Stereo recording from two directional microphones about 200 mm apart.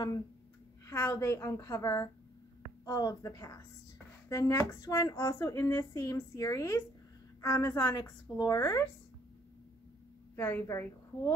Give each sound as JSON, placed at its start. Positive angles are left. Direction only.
{"t": 0.8, "sound": "a woman's voice", "side_deg": 15}
{"t": 10.3, "sound": "speech", "side_deg": 10}